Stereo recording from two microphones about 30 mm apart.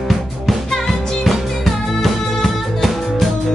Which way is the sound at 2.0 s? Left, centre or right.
Centre.